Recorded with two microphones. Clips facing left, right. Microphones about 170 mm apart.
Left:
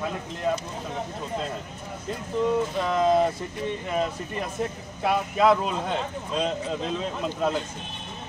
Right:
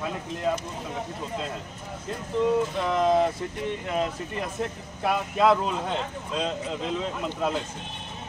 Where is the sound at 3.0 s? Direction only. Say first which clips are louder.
Left 1 dB; 10° left (ahead or behind).